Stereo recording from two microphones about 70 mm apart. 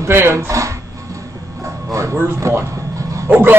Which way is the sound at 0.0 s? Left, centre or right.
Right.